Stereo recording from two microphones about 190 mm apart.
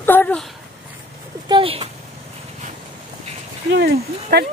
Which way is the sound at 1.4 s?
25° right (ahead or behind).